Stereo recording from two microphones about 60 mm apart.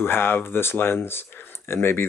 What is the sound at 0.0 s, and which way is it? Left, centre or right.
Speech, left.